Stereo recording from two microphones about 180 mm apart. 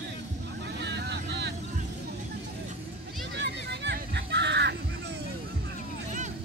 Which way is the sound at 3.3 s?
75° right (ahead or behind).